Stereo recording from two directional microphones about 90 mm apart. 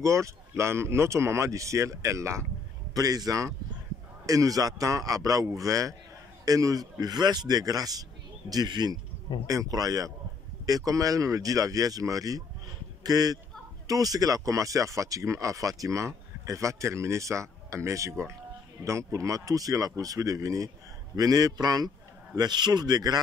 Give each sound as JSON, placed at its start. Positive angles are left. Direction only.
{"t": 0.0, "sound": "a man's voice", "side_deg": -35}